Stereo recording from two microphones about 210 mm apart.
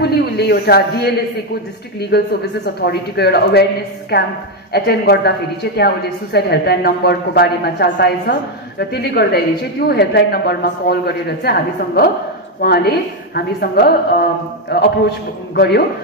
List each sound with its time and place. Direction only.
0.0 s a man's voice: 50° left (ahead or behind)